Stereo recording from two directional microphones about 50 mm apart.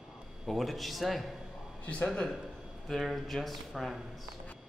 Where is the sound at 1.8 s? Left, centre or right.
Left.